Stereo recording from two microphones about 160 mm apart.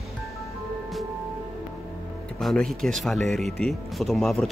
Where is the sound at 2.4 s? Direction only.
Centre (ahead or behind).